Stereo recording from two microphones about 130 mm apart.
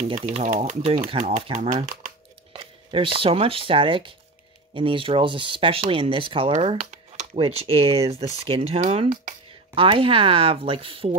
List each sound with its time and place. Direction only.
0.3 s speech: 60° right (ahead or behind)
0.9 s speech: 45° right (ahead or behind)
1.5 s speech: 70° right (ahead or behind)
2.5 s speech: 45° right (ahead or behind)
6.8 s a sound: 65° right (ahead or behind)
7.3 s speech: 45° right (ahead or behind)